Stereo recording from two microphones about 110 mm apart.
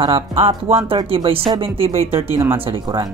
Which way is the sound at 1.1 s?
55° right (ahead or behind).